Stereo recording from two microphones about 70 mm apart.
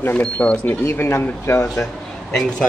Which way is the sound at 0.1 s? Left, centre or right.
Centre.